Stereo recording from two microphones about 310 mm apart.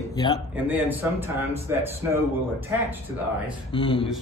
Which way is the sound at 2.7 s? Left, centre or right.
Centre.